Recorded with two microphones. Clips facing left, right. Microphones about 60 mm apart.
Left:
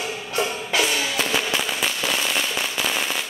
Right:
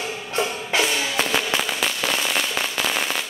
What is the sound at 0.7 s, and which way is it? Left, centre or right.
Music, right.